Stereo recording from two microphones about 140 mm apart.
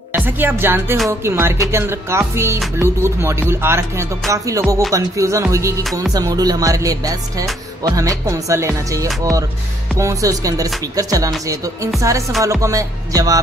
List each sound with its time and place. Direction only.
0.1 s music: 15° right (ahead or behind)
2.8 s speech: 20° right (ahead or behind)
4.3 s music: 20° right (ahead or behind)